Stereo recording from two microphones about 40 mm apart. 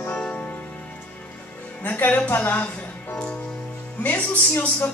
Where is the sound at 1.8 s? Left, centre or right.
Left.